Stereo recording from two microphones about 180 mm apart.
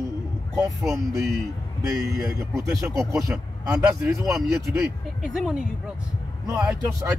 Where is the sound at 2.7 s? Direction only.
20° right (ahead or behind).